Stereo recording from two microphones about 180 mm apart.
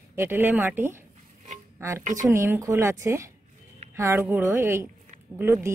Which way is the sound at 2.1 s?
15° right (ahead or behind).